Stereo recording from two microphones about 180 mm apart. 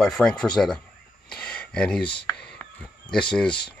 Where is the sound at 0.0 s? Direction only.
5° left (ahead or behind).